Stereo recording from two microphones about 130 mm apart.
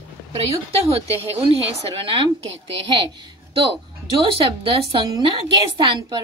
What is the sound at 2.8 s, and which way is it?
A woman's voice, 40° right (ahead or behind).